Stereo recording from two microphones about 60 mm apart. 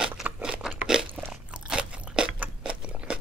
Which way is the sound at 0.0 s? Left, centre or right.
Centre.